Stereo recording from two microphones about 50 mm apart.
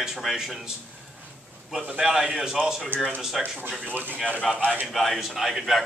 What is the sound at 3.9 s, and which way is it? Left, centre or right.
Speech, right.